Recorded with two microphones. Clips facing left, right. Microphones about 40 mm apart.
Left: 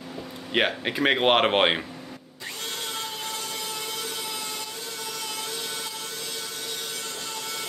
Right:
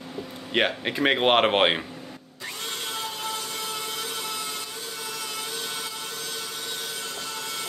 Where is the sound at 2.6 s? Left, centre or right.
Centre.